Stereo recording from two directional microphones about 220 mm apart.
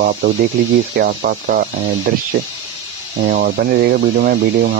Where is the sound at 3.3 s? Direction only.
50° right (ahead or behind).